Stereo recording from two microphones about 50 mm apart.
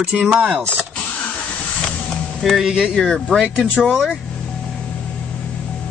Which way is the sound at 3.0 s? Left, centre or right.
Centre.